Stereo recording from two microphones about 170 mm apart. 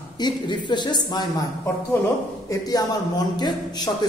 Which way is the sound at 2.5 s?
25° left (ahead or behind).